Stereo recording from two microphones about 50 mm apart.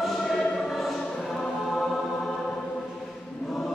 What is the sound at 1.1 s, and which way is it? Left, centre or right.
Music, centre.